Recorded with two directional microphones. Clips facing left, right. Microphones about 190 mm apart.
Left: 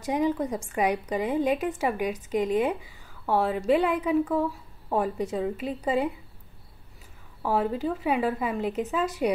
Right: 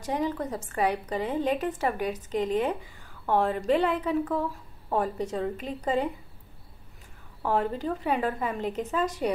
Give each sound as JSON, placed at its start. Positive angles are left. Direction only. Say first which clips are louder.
{"t": 0.0, "sound": "a woman's voice", "louder": "left 3 dB", "side_deg": 10}
{"t": 7.4, "sound": "a woman's voice", "louder": "left 1 dB", "side_deg": 5}